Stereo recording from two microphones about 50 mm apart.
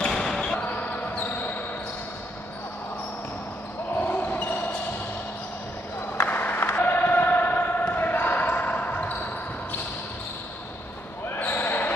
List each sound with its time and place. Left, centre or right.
0.0 s basketball bounce: centre
0.7 s basketball bounce: left
4.0 s basketball bounce: left
6.2 s a sound: left
11.2 s basketball bounce: left